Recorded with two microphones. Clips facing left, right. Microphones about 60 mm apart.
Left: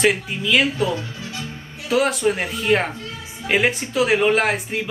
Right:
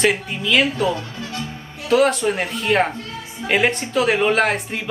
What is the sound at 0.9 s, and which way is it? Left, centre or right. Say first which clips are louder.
Speech: right 2 dB; right.